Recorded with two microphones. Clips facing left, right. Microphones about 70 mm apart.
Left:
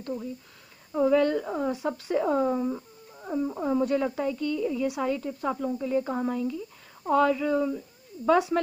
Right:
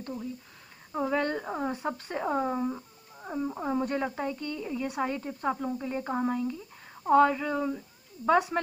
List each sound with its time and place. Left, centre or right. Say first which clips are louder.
0.9 s speech: left 6 dB; right
2.7 s wild animals: left 4 dB; centre
3.8 s speech: left 4 dB; right